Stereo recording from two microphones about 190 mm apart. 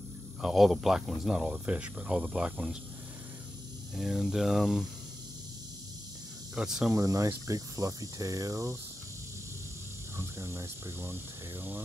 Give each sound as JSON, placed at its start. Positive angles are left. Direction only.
{"t": 0.4, "sound": "speech", "side_deg": 0}
{"t": 3.9, "sound": "speech", "side_deg": -5}
{"t": 6.5, "sound": "speech", "side_deg": -5}
{"t": 6.9, "sound": "cricket", "side_deg": -15}
{"t": 10.1, "sound": "cricket", "side_deg": -15}